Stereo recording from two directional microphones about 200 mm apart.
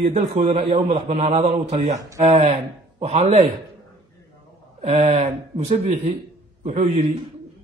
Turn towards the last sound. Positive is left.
turn(degrees=-30)  # may be behind; listen again after turning